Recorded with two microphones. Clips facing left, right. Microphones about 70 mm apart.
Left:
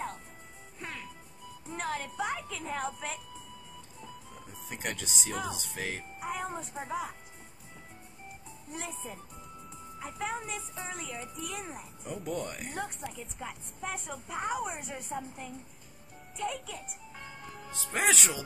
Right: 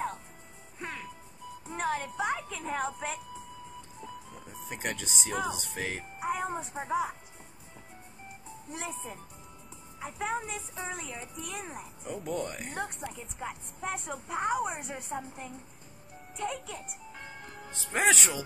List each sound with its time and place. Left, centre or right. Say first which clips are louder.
0.7 s music: right 3 dB; centre
1.8 s a woman's voice: right 3 dB; centre
4.6 s speech: right 2 dB; centre
6.1 s speech: right 6 dB; centre
8.7 s a woman's voice: right 1 dB; centre
12.0 s a woman's voice: right 2 dB; centre
17.6 s speech: right 3 dB; centre